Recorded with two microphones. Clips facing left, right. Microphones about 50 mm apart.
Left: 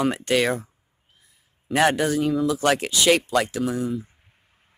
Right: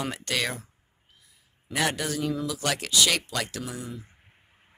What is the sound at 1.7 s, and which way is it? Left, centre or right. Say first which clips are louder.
Speech: left 8 dB; left.